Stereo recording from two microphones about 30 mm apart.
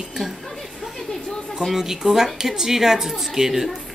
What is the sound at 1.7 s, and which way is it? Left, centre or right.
A woman's voice, centre.